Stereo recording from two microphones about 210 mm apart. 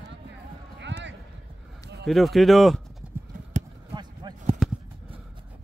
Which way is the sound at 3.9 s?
20° right (ahead or behind).